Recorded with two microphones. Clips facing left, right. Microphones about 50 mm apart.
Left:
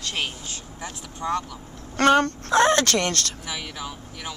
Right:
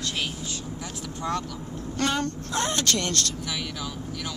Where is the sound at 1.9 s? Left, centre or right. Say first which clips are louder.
Left 9 dB; left.